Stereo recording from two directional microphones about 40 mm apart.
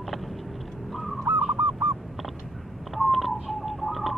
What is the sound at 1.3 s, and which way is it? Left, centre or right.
Goose, right.